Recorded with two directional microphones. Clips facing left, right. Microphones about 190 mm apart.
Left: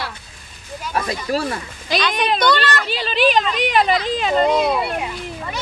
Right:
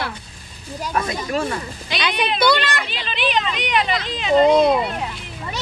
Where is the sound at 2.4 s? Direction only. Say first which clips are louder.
Right 2 dB; 10° right (ahead or behind).